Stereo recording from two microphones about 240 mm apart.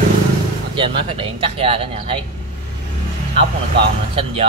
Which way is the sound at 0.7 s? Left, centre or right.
Right.